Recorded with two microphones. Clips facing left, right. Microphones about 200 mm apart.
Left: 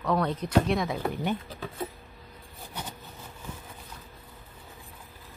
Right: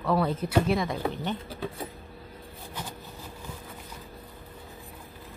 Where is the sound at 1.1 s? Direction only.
10° left (ahead or behind).